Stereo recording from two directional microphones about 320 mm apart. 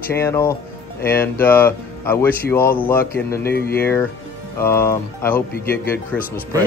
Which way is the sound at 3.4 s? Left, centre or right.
Left.